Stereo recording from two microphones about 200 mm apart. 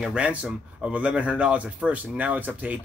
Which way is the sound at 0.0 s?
5° right (ahead or behind).